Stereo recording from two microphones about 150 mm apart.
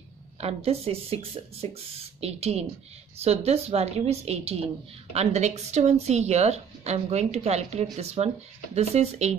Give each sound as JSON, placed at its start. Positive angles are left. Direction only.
{"t": 0.4, "sound": "a woman's voice", "side_deg": -40}